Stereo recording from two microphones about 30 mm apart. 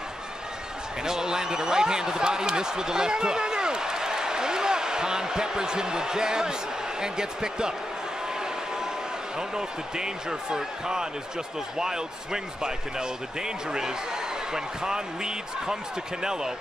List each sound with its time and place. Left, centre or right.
1.0 s speech: right
9.6 s speech: right